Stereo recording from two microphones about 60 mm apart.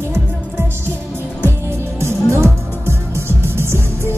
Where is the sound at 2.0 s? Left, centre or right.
Right.